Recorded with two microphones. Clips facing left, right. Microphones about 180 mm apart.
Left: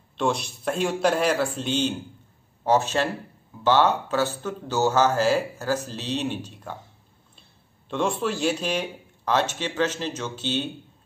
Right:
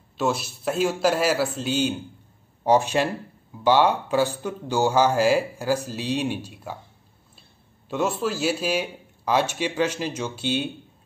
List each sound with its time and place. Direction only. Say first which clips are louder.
0.2 s a man's voice: even; 5° right (ahead or behind)
7.9 s speech: right 1 dB; 5° right (ahead or behind)